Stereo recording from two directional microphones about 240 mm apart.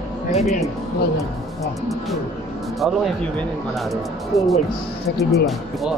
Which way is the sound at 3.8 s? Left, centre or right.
Centre.